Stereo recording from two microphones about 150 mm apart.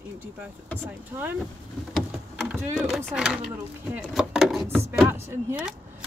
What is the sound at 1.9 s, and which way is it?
Boat, centre (ahead or behind).